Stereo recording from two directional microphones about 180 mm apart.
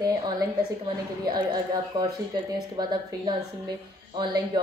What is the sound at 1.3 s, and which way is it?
A woman's voice, 25° right (ahead or behind).